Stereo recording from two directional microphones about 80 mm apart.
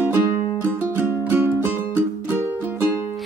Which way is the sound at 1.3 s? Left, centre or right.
Right.